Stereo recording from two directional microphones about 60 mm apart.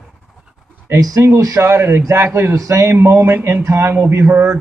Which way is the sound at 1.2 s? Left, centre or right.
Right.